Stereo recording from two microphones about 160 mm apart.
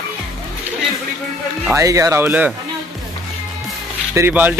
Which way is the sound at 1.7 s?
20° right (ahead or behind).